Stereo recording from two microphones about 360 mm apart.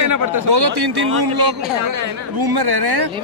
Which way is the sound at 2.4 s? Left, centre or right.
Right.